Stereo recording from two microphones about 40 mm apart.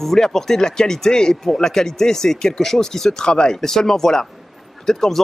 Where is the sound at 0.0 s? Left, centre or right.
Centre.